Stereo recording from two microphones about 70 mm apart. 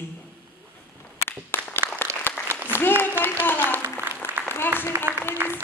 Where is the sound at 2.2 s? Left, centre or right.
Left.